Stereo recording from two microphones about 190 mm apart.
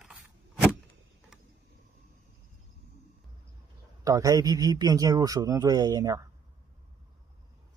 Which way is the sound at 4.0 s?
20° right (ahead or behind).